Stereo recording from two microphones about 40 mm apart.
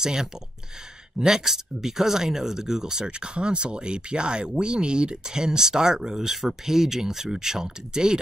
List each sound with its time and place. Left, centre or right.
0.0 s speech: centre